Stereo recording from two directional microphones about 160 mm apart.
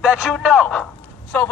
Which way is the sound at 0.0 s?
Centre (ahead or behind).